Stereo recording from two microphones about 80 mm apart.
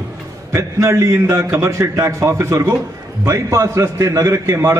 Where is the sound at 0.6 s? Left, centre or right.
Right.